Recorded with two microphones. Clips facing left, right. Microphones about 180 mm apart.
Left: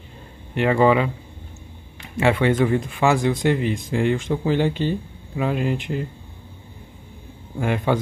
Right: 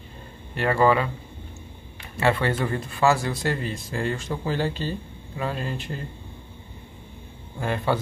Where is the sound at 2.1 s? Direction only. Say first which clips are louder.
Left 5 dB; 15° left (ahead or behind).